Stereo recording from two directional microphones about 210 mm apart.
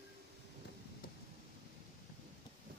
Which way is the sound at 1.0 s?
45° left (ahead or behind).